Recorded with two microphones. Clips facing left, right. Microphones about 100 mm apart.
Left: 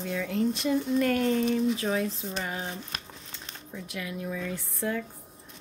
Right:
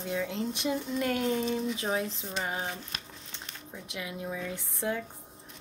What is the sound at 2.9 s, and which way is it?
Crumpling, 45° left (ahead or behind).